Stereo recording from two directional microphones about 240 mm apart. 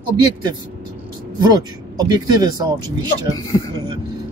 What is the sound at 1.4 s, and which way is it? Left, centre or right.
Speech, centre.